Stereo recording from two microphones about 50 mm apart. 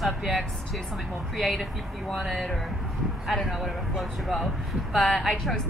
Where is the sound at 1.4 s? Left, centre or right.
Centre.